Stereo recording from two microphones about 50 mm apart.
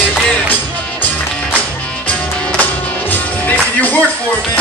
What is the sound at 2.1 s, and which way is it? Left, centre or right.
Music, left.